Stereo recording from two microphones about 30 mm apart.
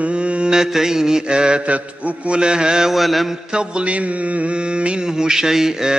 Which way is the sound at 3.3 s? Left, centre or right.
Right.